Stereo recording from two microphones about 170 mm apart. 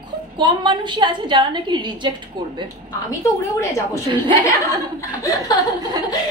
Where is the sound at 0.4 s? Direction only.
25° right (ahead or behind).